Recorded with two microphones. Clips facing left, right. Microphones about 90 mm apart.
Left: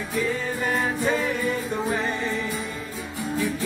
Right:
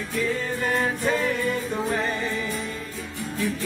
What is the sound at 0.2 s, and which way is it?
Music, 5° left (ahead or behind).